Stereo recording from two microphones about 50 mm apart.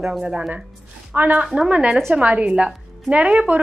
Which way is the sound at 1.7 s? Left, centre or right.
Right.